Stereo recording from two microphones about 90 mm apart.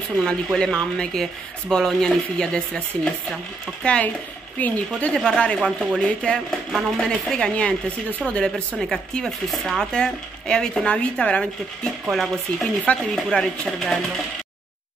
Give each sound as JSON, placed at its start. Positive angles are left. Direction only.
{"t": 0.2, "sound": "speech", "side_deg": 5}
{"t": 3.8, "sound": "speech", "side_deg": 10}
{"t": 5.0, "sound": "speech", "side_deg": 5}
{"t": 5.6, "sound": "speech", "side_deg": 0}
{"t": 5.9, "sound": "speech", "side_deg": 10}